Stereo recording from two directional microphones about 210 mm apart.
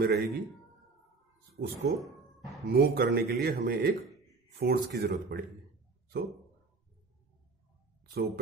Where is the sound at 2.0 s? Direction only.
Centre (ahead or behind).